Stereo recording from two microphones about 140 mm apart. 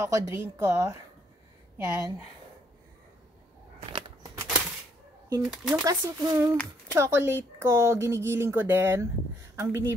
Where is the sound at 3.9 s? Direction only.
35° right (ahead or behind).